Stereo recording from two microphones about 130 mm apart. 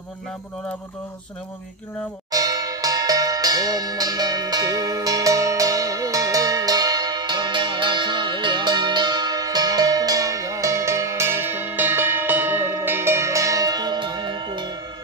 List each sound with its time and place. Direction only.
2.3 s cowbell: 30° right (ahead or behind)